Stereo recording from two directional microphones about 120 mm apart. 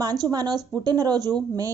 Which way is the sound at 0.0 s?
35° right (ahead or behind).